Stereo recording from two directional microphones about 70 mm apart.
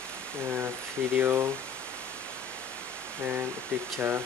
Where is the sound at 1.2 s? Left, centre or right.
Right.